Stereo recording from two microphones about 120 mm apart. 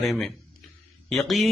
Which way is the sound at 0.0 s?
Centre (ahead or behind).